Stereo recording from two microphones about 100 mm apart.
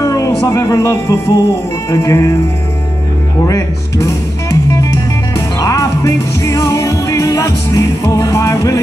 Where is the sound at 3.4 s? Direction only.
35° left (ahead or behind).